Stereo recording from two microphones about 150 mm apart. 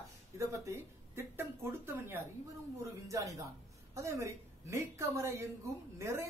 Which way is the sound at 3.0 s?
20° right (ahead or behind).